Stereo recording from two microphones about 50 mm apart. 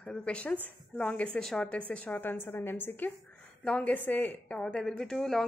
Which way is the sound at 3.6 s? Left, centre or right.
Left.